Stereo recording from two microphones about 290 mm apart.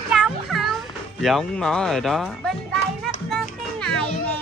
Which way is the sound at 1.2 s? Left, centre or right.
Centre.